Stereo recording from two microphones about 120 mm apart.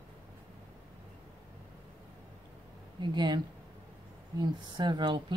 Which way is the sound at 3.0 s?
40° right (ahead or behind).